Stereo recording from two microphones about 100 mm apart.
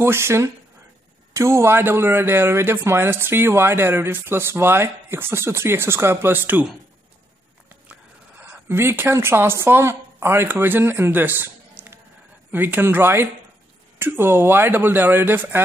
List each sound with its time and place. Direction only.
0.0 s speech: 25° right (ahead or behind)
8.5 s a woman's voice: 25° right (ahead or behind)